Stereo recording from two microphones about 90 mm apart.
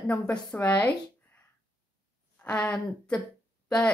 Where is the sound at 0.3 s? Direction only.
15° left (ahead or behind).